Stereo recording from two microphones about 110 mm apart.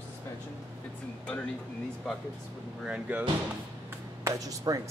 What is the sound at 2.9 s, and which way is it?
Speech, 10° right (ahead or behind).